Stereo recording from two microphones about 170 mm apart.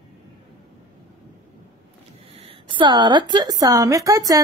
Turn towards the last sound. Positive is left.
turn(degrees=-20)  # may be behind; listen again after turning